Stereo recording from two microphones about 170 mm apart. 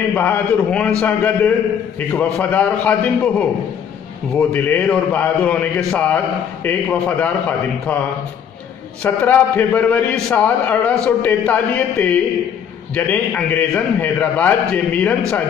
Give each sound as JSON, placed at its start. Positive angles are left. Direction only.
{"t": 0.1, "sound": "a man's voice", "side_deg": 10}
{"t": 9.0, "sound": "a man's voice", "side_deg": 10}